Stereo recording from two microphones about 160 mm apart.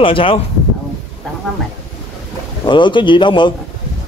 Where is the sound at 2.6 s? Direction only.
30° left (ahead or behind).